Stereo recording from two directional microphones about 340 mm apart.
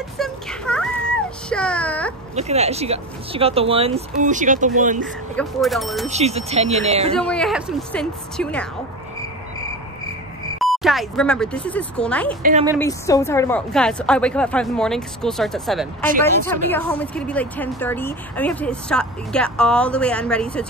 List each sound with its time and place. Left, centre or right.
0.2 s baby cry: centre
2.3 s speech: centre
5.0 s a woman's voice: centre
6.0 s speech: centre
7.2 s a woman's voice: centre
10.6 s a woman's voice: centre